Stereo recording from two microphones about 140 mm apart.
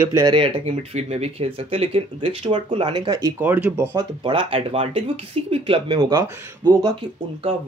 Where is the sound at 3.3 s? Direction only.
10° right (ahead or behind).